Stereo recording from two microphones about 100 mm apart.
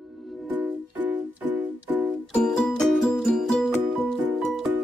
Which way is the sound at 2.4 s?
5° left (ahead or behind).